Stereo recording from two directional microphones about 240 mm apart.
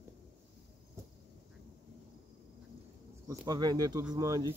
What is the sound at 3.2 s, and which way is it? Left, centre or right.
Speech, centre.